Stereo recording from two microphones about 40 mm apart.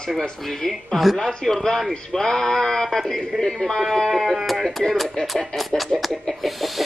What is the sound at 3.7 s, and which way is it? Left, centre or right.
Speech, centre.